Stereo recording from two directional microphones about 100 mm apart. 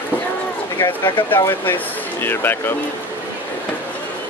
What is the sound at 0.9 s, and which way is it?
Speech, 50° left (ahead or behind).